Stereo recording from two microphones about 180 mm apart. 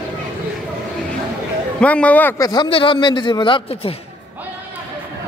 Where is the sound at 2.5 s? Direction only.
25° left (ahead or behind).